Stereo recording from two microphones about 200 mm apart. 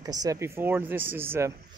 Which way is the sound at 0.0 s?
20° right (ahead or behind).